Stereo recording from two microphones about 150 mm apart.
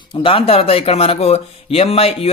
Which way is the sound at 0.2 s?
40° left (ahead or behind).